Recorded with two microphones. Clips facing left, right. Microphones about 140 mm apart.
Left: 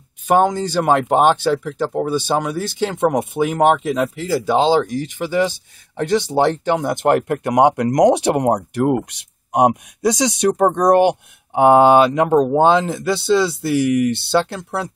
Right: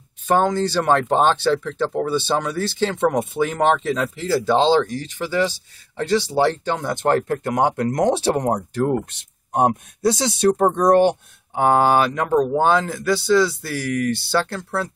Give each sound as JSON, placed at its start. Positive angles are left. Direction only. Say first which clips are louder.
{"t": 0.3, "sound": "speech", "louder": "left 2 dB", "side_deg": 15}